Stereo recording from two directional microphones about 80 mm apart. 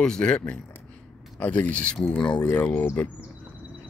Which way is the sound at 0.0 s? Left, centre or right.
Centre.